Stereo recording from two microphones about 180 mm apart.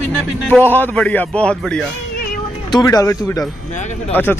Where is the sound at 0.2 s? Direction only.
10° left (ahead or behind).